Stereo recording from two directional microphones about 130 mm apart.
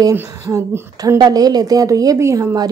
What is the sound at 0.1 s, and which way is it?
A woman's voice, 20° right (ahead or behind).